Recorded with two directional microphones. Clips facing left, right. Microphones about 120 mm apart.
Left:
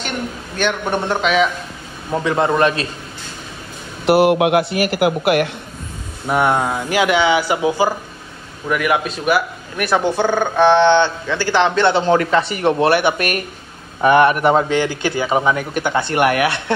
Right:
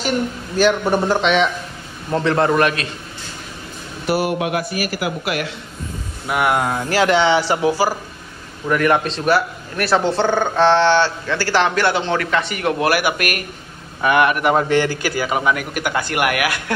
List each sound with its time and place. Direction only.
0.6 s a man's voice: centre (ahead or behind); by 2.9 s 30° left (ahead or behind)
4.0 s a man's voice: 65° left (ahead or behind)
6.3 s speech: 25° left (ahead or behind)
8.6 s speech: 10° left (ahead or behind); by 12.0 s 25° left (ahead or behind)
12.0 s speech: 35° left (ahead or behind)
14.6 s speech: 15° left (ahead or behind)